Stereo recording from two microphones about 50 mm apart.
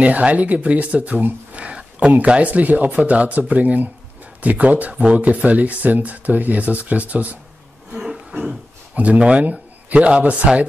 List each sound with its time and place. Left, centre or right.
0.0 s speech: right
7.9 s a sound: centre
8.9 s speech: right